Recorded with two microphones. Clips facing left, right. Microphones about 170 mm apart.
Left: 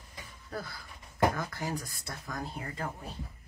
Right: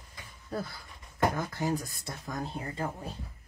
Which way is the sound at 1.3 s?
20° right (ahead or behind).